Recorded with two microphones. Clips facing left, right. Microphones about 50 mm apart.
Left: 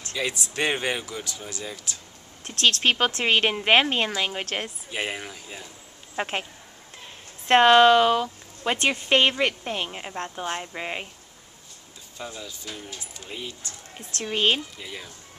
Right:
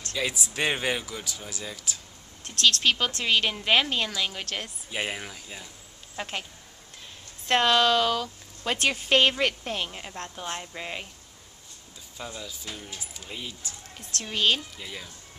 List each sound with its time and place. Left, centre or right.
0.3 s speech: centre
2.4 s a woman's voice: left
4.9 s speech: centre
6.1 s speech: left
7.4 s speech: left
8.7 s a woman's voice: centre; by 11.1 s left
12.2 s speech: centre
14.2 s a woman's voice: left
14.8 s speech: centre